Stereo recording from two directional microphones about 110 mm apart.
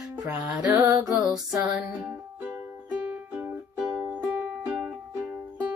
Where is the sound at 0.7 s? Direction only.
30° right (ahead or behind).